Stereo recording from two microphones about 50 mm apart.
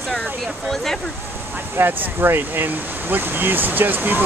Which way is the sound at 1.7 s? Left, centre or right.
Right.